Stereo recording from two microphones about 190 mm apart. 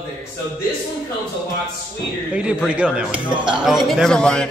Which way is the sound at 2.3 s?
5° right (ahead or behind).